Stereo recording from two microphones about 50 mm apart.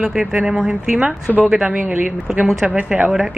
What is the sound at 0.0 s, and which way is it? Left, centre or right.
Speech, centre.